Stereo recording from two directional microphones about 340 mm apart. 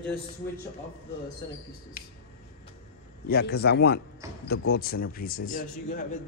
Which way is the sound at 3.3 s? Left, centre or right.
Left.